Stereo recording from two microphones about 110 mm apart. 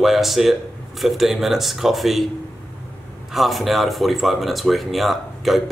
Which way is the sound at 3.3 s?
Centre (ahead or behind).